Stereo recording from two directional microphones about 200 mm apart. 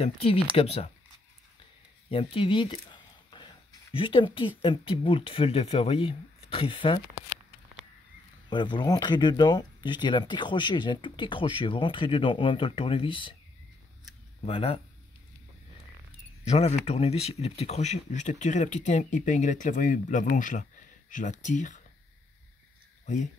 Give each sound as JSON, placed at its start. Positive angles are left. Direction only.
{"t": 0.0, "sound": "speech", "side_deg": 30}
{"t": 2.0, "sound": "speech", "side_deg": 25}
{"t": 8.5, "sound": "speech", "side_deg": 20}
{"t": 14.4, "sound": "speech", "side_deg": 30}
{"t": 16.4, "sound": "speech", "side_deg": 30}